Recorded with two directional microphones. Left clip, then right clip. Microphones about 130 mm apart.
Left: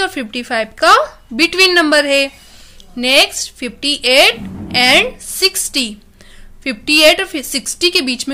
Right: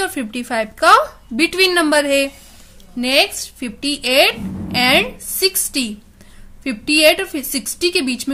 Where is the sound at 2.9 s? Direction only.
20° left (ahead or behind).